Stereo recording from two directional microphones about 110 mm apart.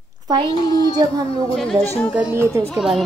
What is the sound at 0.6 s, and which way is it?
Speech, 40° left (ahead or behind).